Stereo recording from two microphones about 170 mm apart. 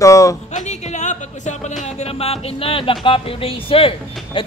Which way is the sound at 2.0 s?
35° left (ahead or behind).